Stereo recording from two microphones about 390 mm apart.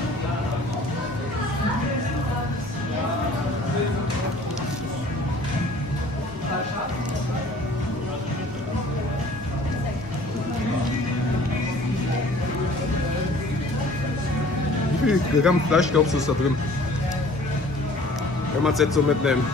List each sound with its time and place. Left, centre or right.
15.0 s speech: centre
18.6 s speech: centre